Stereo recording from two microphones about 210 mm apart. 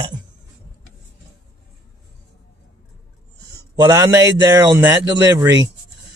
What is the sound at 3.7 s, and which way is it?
Speech, 15° right (ahead or behind).